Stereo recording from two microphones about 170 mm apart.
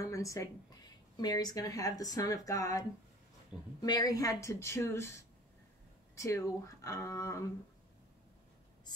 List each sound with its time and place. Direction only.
0.0 s a woman's voice: 20° left (ahead or behind)
3.8 s speech: 20° left (ahead or behind)
6.1 s speech: 15° left (ahead or behind)